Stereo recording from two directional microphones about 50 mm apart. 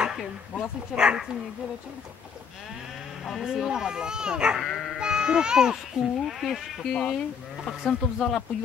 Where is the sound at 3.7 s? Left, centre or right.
Centre.